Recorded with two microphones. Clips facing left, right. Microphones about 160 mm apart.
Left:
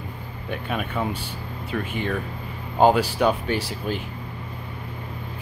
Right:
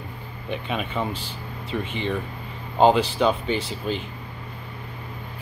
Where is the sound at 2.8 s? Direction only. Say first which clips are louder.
Even; 10° left (ahead or behind).